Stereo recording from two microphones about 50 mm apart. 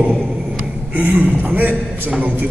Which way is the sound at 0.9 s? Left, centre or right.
Right.